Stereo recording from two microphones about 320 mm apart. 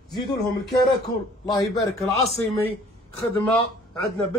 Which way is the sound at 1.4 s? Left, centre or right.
Centre.